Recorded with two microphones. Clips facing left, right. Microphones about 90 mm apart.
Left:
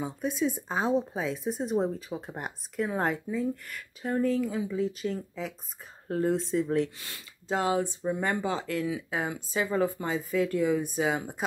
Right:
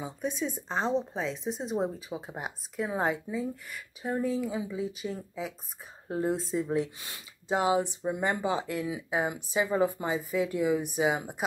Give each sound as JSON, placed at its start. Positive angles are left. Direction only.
{"t": 0.0, "sound": "speech", "side_deg": 0}